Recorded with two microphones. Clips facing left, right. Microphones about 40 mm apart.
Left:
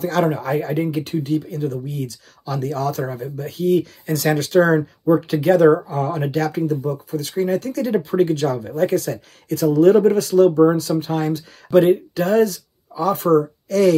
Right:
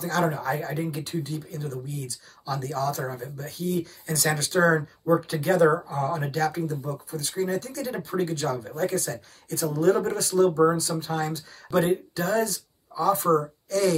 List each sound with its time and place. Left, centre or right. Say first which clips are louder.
0.0 s speech: left 6 dB; left